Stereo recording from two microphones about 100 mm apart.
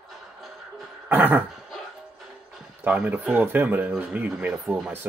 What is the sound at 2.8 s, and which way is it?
Speech, 15° right (ahead or behind).